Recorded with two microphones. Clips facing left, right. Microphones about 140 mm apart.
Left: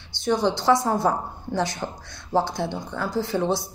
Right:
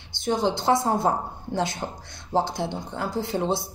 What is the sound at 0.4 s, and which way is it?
Speech, 20° right (ahead or behind).